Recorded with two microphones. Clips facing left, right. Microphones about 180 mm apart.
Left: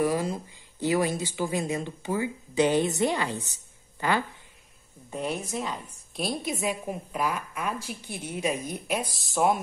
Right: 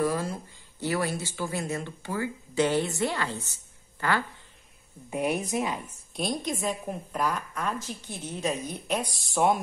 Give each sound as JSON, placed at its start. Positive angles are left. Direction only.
{"t": 0.0, "sound": "speech", "side_deg": 15}
{"t": 5.1, "sound": "speech", "side_deg": -15}
{"t": 6.1, "sound": "speech", "side_deg": 5}